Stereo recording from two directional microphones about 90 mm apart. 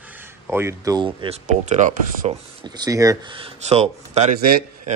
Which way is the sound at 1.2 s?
70° right (ahead or behind).